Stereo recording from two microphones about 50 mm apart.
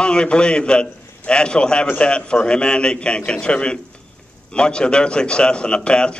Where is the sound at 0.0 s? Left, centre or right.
Centre.